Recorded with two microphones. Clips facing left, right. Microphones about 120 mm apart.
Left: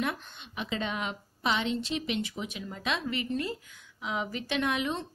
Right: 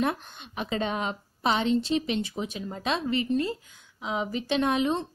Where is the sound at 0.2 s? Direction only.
50° right (ahead or behind).